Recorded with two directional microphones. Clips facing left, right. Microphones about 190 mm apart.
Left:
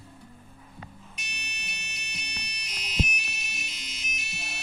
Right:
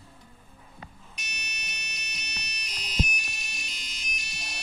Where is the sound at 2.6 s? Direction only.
25° left (ahead or behind).